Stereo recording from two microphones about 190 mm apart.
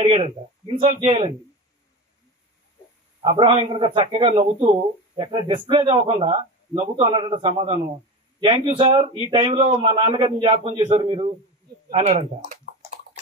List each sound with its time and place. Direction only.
0.0 s speech: 30° right (ahead or behind)
3.2 s a man's voice: 25° right (ahead or behind)